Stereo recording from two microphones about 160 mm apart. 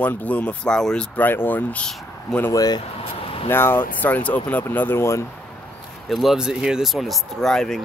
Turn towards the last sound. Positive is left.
turn(degrees=5)  # may be behind; listen again after turning